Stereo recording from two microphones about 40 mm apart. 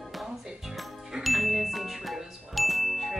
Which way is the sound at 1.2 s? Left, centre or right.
Centre.